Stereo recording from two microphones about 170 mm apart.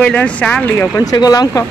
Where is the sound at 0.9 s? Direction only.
20° left (ahead or behind).